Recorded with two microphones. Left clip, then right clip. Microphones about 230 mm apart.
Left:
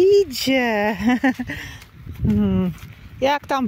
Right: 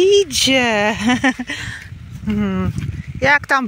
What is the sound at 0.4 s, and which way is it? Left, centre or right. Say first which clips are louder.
Speech: right 5 dB; centre.